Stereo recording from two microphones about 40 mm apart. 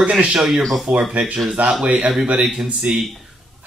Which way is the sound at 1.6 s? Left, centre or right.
Right.